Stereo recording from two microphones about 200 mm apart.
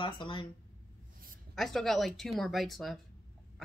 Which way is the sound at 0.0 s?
25° left (ahead or behind).